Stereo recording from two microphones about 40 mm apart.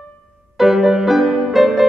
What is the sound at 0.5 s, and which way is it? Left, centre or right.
Music, centre.